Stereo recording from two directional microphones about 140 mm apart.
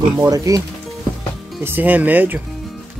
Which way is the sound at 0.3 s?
25° right (ahead or behind).